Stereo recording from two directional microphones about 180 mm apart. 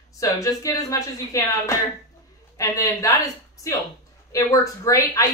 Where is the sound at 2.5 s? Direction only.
20° left (ahead or behind).